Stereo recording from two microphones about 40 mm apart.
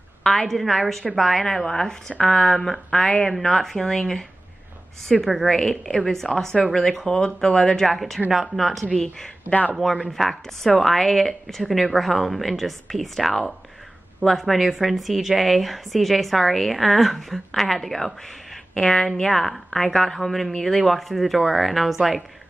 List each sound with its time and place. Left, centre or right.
0.2 s a woman's voice: centre
7.8 s a woman's voice: centre
9.5 s speech: left
10.1 s a woman's voice: centre